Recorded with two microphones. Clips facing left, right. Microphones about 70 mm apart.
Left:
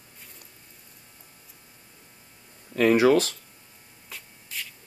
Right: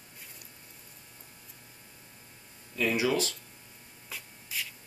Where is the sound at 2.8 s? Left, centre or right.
Left.